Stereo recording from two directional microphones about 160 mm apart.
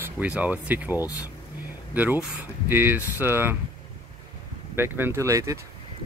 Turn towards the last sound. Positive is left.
turn(degrees=-20)  # may be behind; listen again after turning